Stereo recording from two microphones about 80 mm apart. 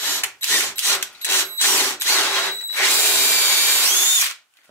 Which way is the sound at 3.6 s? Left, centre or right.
Left.